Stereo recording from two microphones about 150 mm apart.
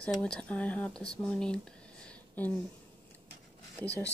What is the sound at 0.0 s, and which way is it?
Speech, 5° left (ahead or behind).